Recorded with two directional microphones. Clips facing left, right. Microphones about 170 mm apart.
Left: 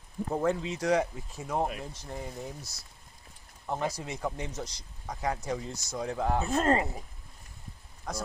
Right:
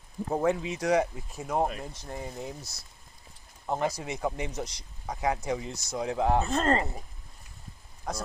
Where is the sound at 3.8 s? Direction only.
10° right (ahead or behind).